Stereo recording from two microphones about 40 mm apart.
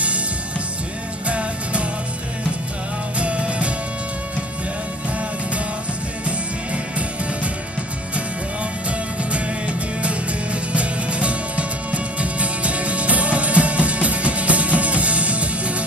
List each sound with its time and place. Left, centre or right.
1.2 s music: right
3.2 s music: right
6.2 s music: right
9.3 s music: right